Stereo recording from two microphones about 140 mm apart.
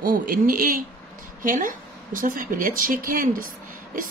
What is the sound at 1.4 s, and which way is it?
A woman's voice, 70° right (ahead or behind).